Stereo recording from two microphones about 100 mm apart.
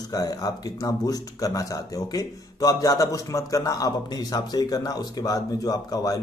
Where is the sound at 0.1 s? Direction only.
40° left (ahead or behind).